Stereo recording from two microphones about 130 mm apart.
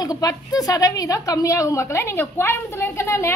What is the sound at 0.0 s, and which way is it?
A woman's voice, 30° left (ahead or behind).